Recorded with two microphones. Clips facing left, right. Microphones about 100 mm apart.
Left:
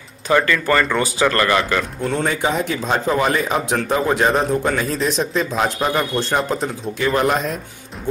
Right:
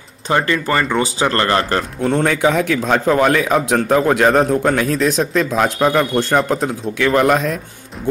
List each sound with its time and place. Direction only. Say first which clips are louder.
0.3 s speech: even; 25° right (ahead or behind); by 2.2 s 45° right (ahead or behind)
2.2 s a man's voice: right 4 dB; 65° right (ahead or behind)